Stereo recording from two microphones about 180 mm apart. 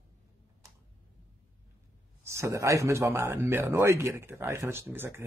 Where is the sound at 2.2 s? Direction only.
15° right (ahead or behind).